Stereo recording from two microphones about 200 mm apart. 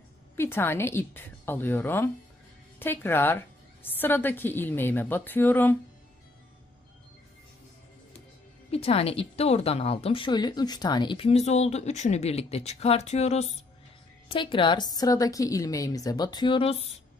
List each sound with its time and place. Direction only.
0.4 s a woman's voice: 10° left (ahead or behind)
8.7 s a woman's voice: 30° left (ahead or behind)